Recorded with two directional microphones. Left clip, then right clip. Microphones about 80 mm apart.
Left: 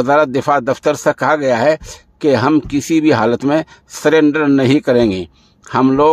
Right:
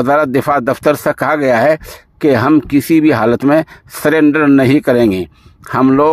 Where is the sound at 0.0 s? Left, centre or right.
Right.